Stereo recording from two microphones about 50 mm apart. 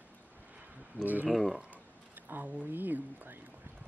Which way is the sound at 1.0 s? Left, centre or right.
Right.